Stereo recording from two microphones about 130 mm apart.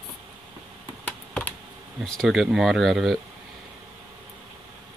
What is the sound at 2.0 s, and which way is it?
Speech, centre (ahead or behind).